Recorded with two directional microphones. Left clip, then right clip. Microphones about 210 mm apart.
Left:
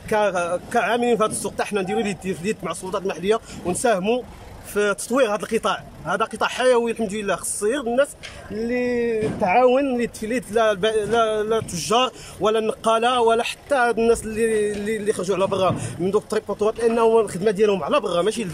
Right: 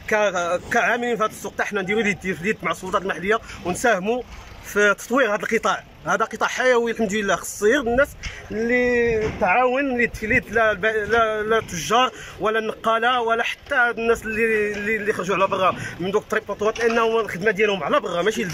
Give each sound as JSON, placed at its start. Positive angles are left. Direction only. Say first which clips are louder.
{"t": 0.1, "sound": "speech", "louder": "even", "side_deg": 5}